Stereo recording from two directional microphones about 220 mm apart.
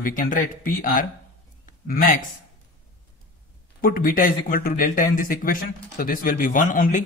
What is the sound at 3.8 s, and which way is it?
Speech, 40° left (ahead or behind).